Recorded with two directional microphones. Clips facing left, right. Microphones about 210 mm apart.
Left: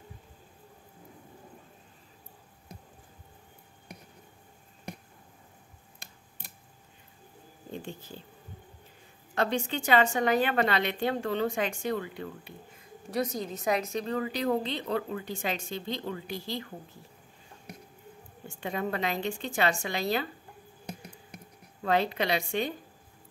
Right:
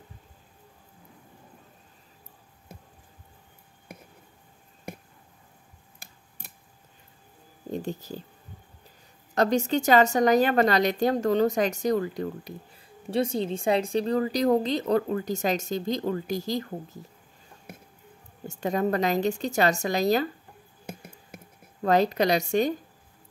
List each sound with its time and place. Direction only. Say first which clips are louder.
7.7 s a woman's voice: right 8 dB; 40° right (ahead or behind)
9.3 s a woman's voice: right 6 dB; 40° right (ahead or behind)
13.1 s a woman's voice: right 5 dB; 30° right (ahead or behind)
18.5 s a woman's voice: right 7 dB; 40° right (ahead or behind)
21.8 s a woman's voice: right 6 dB; 40° right (ahead or behind)